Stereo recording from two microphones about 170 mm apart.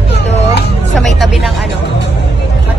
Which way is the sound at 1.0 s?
Centre (ahead or behind).